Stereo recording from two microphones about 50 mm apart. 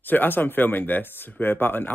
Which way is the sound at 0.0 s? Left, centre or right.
Left.